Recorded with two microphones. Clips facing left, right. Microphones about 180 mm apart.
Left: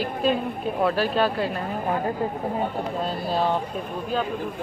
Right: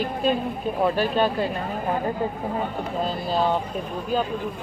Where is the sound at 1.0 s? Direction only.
Centre (ahead or behind).